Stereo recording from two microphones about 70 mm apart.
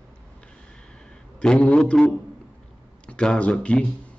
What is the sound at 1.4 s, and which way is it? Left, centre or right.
Speech, centre.